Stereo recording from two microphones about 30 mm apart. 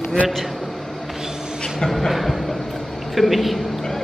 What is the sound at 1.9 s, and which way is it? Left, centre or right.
A woman's voice, centre.